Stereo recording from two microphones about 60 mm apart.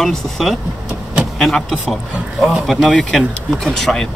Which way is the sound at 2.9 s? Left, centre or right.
Centre.